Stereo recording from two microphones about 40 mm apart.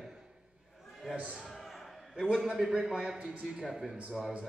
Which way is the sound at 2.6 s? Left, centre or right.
Centre.